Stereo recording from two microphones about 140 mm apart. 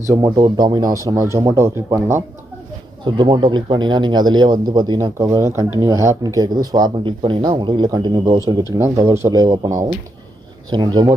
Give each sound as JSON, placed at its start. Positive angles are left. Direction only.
{"t": 0.1, "sound": "speech", "side_deg": -25}
{"t": 3.2, "sound": "speech", "side_deg": -35}